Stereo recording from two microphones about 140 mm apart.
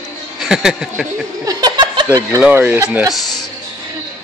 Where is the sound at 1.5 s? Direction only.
30° right (ahead or behind).